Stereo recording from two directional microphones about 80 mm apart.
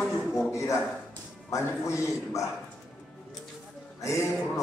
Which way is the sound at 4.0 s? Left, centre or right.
Left.